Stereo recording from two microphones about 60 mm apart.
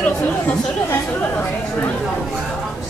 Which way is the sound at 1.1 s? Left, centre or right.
Left.